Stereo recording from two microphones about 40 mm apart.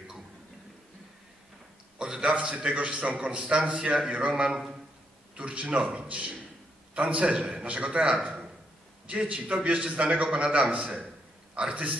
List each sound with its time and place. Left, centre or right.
2.0 s a man's voice: centre
6.0 s a man's voice: right
8.2 s a sound: right
9.2 s a man's voice: right